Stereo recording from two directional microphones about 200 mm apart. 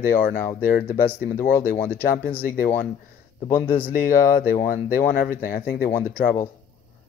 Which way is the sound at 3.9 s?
40° left (ahead or behind).